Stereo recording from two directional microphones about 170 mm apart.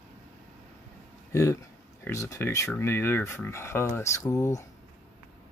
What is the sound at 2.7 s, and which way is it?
Speech, 15° left (ahead or behind).